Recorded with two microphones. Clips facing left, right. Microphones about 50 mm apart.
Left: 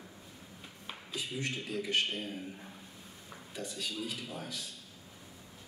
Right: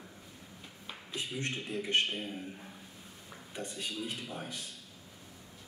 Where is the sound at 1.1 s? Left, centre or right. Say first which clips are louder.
Even; right.